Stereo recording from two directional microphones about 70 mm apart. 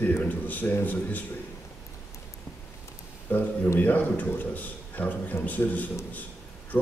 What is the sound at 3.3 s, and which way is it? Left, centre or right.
A man's voice, left.